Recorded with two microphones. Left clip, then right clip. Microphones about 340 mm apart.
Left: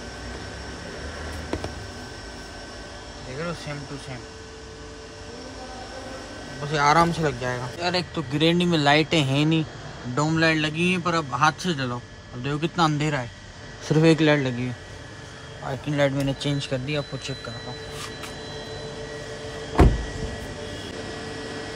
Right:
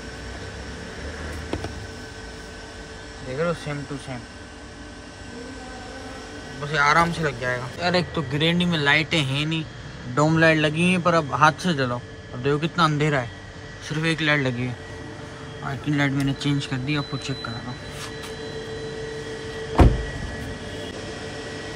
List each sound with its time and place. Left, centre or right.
3.3 s a man's voice: centre
6.6 s a man's voice: centre
10.1 s a man's voice: centre
13.8 s a man's voice: centre